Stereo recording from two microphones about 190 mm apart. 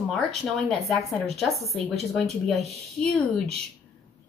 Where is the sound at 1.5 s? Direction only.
15° left (ahead or behind).